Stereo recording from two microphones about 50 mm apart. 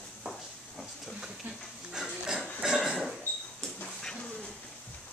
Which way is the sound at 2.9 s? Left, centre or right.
Centre.